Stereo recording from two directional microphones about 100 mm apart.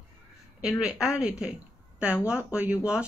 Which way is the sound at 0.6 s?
5° right (ahead or behind).